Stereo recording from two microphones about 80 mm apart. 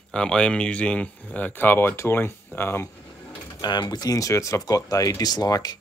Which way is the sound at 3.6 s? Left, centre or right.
Left.